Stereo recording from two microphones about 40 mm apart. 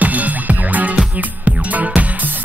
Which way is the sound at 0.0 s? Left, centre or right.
Right.